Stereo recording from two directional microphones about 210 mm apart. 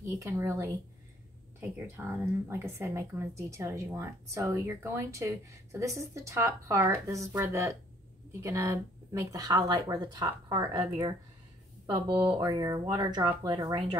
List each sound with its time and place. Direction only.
0.0 s speech: 15° right (ahead or behind)